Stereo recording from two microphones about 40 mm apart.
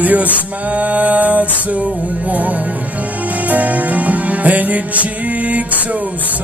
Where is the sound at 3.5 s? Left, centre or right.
Right.